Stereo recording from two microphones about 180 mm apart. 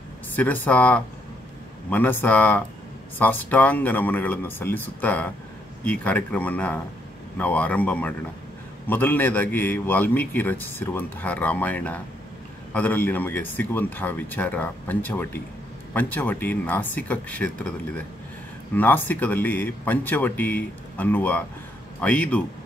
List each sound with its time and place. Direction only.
0.3 s a man's voice: 10° left (ahead or behind)